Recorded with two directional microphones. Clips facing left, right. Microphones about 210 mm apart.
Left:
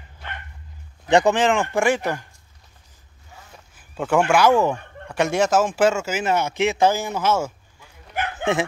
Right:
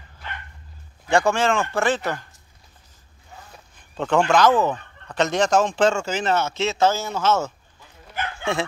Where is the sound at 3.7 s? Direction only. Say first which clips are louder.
Left 1 dB; 10° left (ahead or behind).